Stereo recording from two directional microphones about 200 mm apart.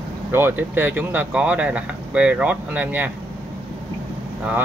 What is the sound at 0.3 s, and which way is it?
Speech, 10° right (ahead or behind).